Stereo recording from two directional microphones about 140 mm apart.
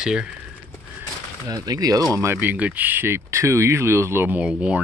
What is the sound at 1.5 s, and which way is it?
Speech, 25° right (ahead or behind).